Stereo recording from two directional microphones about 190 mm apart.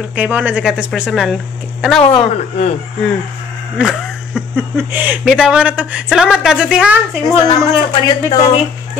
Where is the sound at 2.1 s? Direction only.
35° left (ahead or behind).